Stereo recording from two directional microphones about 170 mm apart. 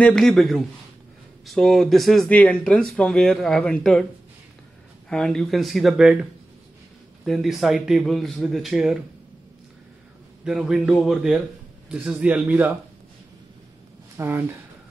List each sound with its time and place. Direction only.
0.0 s speech: 5° left (ahead or behind)
5.1 s speech: 5° left (ahead or behind)
7.2 s speech: centre (ahead or behind)
10.4 s a man's voice: 5° right (ahead or behind)
14.1 s speech: 15° right (ahead or behind)